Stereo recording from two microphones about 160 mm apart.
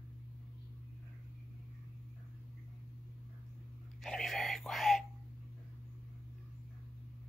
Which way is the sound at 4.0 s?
Centre (ahead or behind).